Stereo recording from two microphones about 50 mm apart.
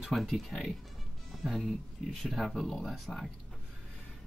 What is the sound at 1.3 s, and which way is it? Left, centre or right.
Music, centre.